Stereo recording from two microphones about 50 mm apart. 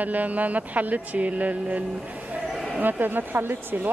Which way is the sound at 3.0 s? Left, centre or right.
Right.